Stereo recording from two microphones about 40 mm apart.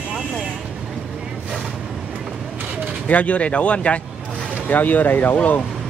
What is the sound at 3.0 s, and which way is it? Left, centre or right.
Speech, left.